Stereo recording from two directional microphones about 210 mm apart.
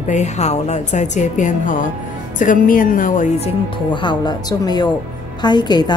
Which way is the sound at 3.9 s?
20° left (ahead or behind).